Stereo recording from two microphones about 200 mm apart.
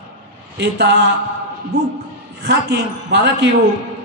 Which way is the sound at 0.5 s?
60° right (ahead or behind).